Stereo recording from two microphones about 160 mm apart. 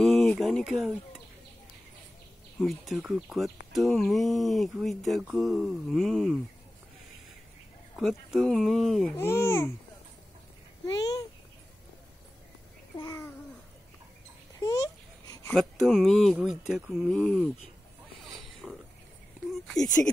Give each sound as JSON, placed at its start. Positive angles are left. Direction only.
{"t": 0.0, "sound": "a sound", "side_deg": 5}
{"t": 2.6, "sound": "speech", "side_deg": 0}
{"t": 7.9, "sound": "speech", "side_deg": 0}
{"t": 9.1, "sound": "speech", "side_deg": 15}
{"t": 10.9, "sound": "speech", "side_deg": 25}
{"t": 12.9, "sound": "babbling", "side_deg": 20}
{"t": 14.6, "sound": "a sound", "side_deg": 20}
{"t": 15.5, "sound": "speech", "side_deg": 0}
{"t": 18.6, "sound": "mechanisms", "side_deg": 0}
{"t": 19.5, "sound": "speech", "side_deg": 0}